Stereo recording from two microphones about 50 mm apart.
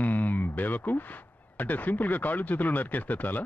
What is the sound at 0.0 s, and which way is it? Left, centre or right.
Speech, left.